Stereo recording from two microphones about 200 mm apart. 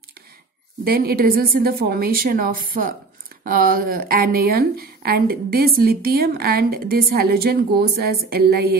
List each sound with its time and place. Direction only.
0.8 s a woman's voice: 50° right (ahead or behind)